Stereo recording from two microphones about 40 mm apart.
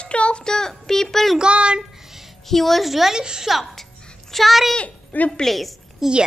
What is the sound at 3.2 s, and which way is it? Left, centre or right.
Speech, centre.